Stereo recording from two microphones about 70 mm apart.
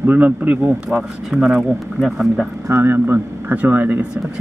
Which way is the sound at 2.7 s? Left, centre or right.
Right.